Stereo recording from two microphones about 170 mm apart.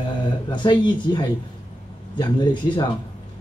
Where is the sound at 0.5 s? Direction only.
25° left (ahead or behind).